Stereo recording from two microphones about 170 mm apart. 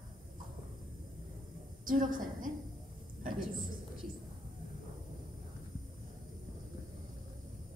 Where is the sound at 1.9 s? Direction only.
50° right (ahead or behind).